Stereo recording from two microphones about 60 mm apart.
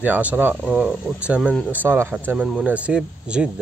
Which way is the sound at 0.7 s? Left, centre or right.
Centre.